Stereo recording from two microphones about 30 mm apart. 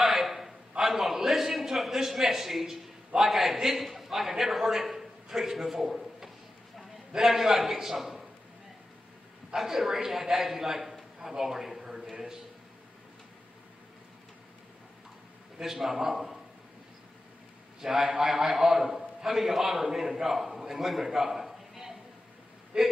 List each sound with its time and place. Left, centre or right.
0.0 s a sound: centre
3.2 s a man's voice: centre
4.9 s drawer open or close: centre
7.2 s a man's voice: centre
9.7 s a man's voice: centre
15.6 s a man's voice: centre
17.7 s a man's voice: centre
22.7 s speech: right